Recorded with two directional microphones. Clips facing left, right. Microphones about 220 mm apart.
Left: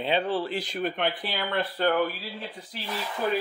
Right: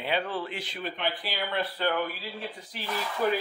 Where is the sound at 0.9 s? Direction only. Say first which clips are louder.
Left 3 dB; 55° left (ahead or behind).